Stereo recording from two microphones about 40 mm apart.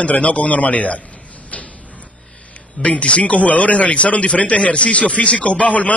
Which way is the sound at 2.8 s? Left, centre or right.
Left.